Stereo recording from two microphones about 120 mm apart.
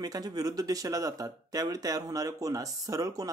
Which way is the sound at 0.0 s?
35° right (ahead or behind).